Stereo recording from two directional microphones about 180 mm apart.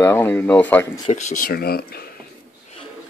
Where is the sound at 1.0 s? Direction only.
45° left (ahead or behind); by 2.0 s 60° left (ahead or behind).